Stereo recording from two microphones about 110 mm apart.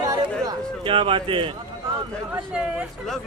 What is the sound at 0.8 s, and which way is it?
Speech, 55° right (ahead or behind).